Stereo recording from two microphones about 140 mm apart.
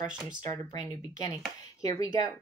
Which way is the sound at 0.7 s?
25° left (ahead or behind).